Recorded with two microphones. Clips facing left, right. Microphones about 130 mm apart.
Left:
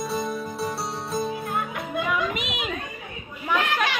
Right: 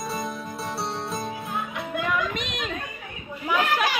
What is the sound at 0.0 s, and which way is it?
Music, centre (ahead or behind).